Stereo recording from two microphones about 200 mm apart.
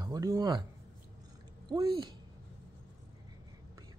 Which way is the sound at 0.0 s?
15° right (ahead or behind).